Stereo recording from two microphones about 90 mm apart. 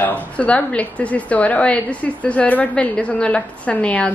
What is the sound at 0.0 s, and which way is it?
A woman's voice, 20° left (ahead or behind).